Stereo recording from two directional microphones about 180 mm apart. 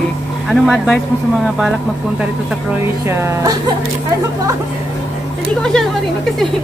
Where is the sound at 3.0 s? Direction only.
15° right (ahead or behind).